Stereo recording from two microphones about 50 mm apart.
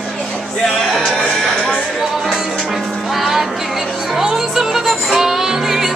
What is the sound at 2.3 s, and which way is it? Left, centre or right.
Music, centre.